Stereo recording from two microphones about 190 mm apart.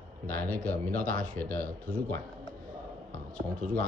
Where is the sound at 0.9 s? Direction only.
50° right (ahead or behind).